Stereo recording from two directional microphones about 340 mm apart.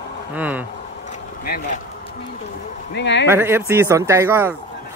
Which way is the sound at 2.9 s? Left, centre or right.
Left.